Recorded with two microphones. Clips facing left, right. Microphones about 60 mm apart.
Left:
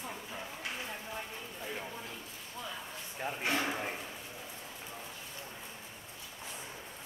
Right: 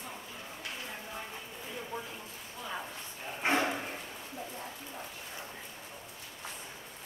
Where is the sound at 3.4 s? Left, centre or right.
Right.